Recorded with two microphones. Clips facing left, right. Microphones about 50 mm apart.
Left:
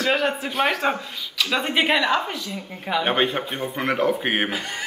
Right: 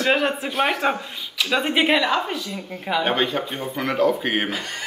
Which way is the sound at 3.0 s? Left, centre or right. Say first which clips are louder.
Left 1 dB; left.